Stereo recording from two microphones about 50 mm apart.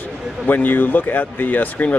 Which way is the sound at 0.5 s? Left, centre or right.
Left.